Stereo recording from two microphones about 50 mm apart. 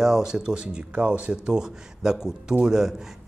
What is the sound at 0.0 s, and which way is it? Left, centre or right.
Speech, centre.